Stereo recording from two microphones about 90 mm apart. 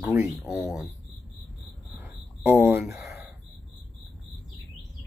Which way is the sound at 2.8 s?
Centre (ahead or behind).